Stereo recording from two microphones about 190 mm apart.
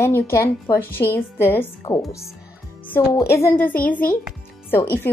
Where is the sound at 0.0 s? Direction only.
15° left (ahead or behind).